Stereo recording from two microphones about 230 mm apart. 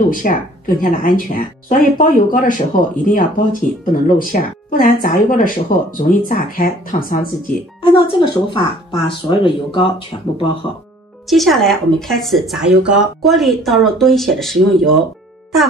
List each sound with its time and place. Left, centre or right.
0.1 s speech: left
7.8 s speech: left
11.2 s speech: centre